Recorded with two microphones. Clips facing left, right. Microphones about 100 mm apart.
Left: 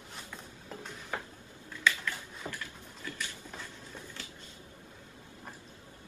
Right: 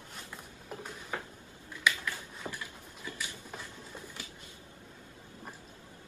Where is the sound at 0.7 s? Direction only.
15° right (ahead or behind).